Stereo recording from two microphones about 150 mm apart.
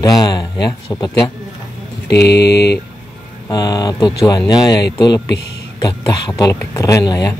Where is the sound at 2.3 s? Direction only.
90° left.